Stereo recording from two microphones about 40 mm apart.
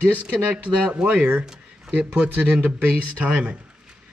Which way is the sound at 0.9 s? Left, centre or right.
Right.